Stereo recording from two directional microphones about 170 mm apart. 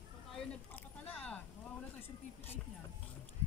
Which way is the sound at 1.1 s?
5° left (ahead or behind).